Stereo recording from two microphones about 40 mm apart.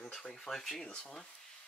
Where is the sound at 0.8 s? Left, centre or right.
Left.